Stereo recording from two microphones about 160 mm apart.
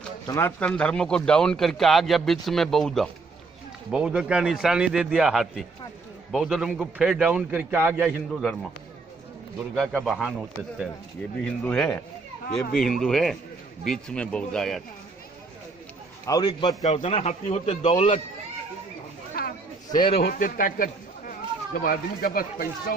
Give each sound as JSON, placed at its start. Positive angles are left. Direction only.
{"t": 0.3, "sound": "a man's voice", "side_deg": 15}
{"t": 9.8, "sound": "a man's voice", "side_deg": 0}
{"t": 11.6, "sound": "a man's voice", "side_deg": 5}
{"t": 16.3, "sound": "a man's voice", "side_deg": 25}
{"t": 16.8, "sound": "a man's voice", "side_deg": 40}
{"t": 19.4, "sound": "a sound", "side_deg": 70}
{"t": 19.9, "sound": "a man's voice", "side_deg": 30}
{"t": 20.2, "sound": "speech", "side_deg": 70}